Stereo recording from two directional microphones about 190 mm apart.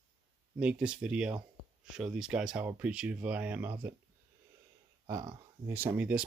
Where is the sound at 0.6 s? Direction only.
5° right (ahead or behind).